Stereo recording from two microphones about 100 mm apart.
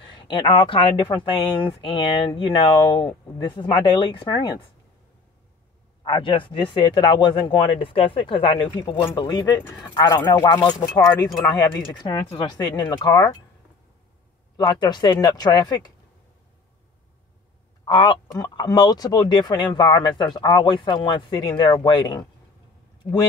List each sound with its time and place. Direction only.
0.2 s speech: 55° left (ahead or behind)
6.0 s speech: 55° left (ahead or behind)
9.1 s speech: 45° left (ahead or behind)
14.6 s speech: 45° left (ahead or behind)
17.8 s speech: 55° left (ahead or behind)